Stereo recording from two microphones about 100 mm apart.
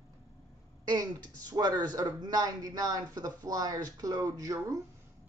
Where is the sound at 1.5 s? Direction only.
40° right (ahead or behind).